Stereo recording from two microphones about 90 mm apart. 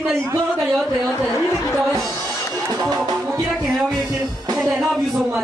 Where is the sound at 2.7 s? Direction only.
40° right (ahead or behind).